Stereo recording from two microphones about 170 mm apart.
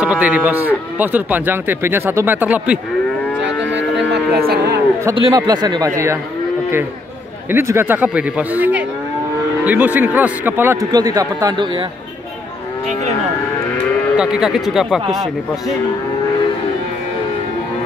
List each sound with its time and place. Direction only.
0.0 s speech: 5° right (ahead or behind)
3.3 s livestock: 90° right; by 4.8 s 70° right (ahead or behind)
5.1 s speech: 25° right (ahead or behind)
7.5 s speech: 15° right (ahead or behind)
14.1 s speech: 5° right (ahead or behind)